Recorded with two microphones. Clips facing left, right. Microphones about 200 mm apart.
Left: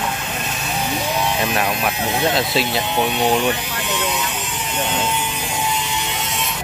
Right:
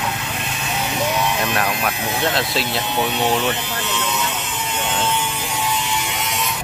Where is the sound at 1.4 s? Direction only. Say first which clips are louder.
Left 1 dB; 5° left (ahead or behind).